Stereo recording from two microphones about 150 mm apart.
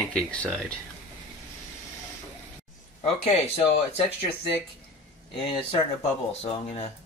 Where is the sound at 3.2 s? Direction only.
45° left (ahead or behind).